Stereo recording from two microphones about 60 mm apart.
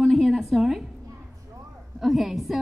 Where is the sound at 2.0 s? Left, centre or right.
Centre.